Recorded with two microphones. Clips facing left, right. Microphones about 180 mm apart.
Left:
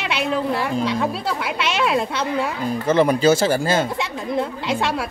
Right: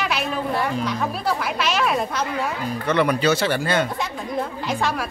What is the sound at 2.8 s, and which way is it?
Speech, 30° left (ahead or behind).